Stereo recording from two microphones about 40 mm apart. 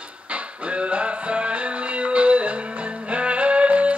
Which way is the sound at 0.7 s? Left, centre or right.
Right.